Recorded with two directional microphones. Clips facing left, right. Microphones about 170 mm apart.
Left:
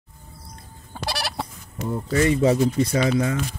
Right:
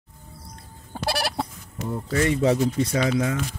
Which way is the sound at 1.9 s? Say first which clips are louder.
Left 3 dB; 5° left (ahead or behind).